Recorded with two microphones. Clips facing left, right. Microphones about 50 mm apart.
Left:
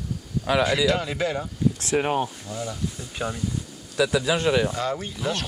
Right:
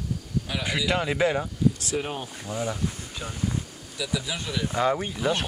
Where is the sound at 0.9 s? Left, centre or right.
Centre.